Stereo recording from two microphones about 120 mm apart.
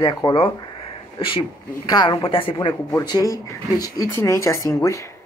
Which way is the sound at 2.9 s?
30° left (ahead or behind).